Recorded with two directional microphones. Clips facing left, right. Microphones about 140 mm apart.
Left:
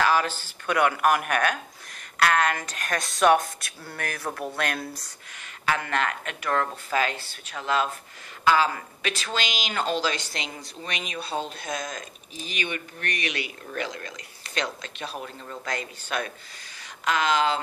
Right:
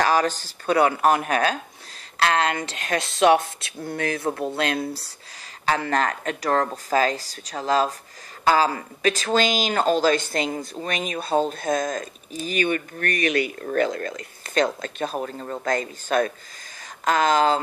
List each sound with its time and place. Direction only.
0.0 s speech: 40° right (ahead or behind)